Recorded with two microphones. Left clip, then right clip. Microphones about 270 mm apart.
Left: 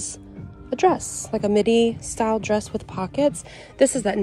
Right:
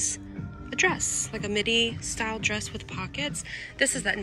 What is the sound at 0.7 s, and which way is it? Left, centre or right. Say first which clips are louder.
Music: left 6 dB; centre.